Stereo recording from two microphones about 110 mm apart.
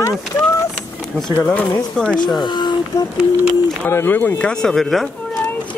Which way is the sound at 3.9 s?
20° left (ahead or behind).